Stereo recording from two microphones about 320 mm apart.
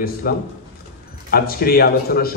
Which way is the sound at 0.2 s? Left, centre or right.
Left.